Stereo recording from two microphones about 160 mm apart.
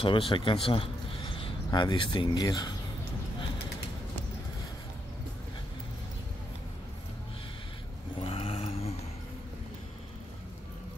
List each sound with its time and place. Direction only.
0.0 s a man's voice: 35° left (ahead or behind)
8.2 s vehicle: 35° left (ahead or behind)